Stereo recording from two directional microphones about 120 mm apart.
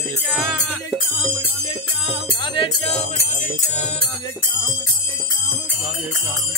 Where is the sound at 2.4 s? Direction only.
40° left (ahead or behind).